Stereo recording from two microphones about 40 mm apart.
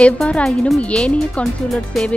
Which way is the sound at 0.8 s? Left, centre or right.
Left.